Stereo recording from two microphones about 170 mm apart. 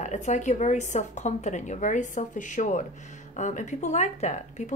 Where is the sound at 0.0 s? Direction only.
45° left (ahead or behind).